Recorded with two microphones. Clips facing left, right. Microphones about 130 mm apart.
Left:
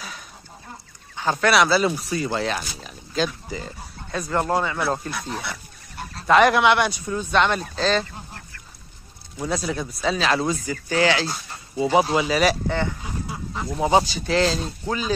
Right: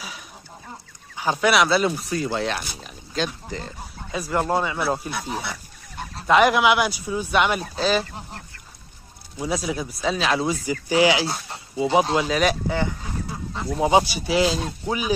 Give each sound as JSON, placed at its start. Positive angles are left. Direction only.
{"t": 1.1, "sound": "speech", "side_deg": -10}
{"t": 1.5, "sound": "speech", "side_deg": 0}
{"t": 9.4, "sound": "speech", "side_deg": -5}
{"t": 10.5, "sound": "speech", "side_deg": -15}
{"t": 11.7, "sound": "speech", "side_deg": 0}
{"t": 12.6, "sound": "speech", "side_deg": -10}